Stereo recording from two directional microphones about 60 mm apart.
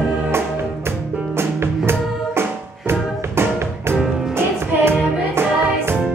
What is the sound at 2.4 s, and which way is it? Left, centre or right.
Music, right.